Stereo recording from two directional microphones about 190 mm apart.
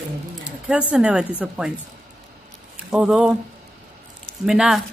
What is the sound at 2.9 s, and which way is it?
Speech, centre (ahead or behind).